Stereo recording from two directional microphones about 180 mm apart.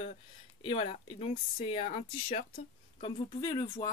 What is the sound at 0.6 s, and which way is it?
Speech, 35° left (ahead or behind).